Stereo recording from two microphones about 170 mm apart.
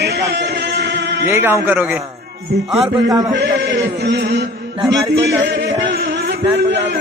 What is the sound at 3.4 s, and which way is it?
Chant, 90° right.